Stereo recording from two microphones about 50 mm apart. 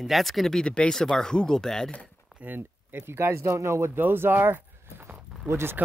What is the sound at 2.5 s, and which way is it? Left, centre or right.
Speech, right.